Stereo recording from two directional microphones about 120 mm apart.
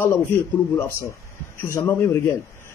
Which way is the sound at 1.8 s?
15° left (ahead or behind).